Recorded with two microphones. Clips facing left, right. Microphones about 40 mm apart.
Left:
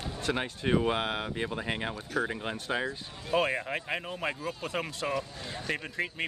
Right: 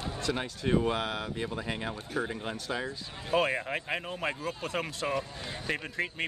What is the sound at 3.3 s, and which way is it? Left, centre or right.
A man's voice, centre.